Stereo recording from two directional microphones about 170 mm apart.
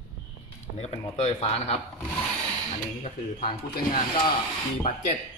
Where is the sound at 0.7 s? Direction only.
40° left (ahead or behind).